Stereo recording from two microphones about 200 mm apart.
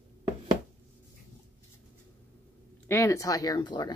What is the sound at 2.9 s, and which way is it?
Speech, 15° left (ahead or behind).